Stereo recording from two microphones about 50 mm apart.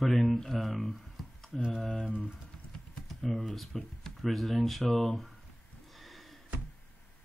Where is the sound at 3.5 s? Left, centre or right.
Centre.